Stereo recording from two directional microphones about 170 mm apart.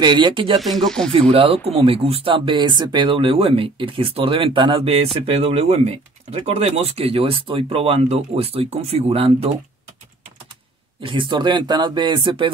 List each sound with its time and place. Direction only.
0.0 s speech: 25° right (ahead or behind)
0.6 s a sound: centre (ahead or behind)
1.1 s speech: 35° right (ahead or behind)
11.0 s speech: 30° right (ahead or behind)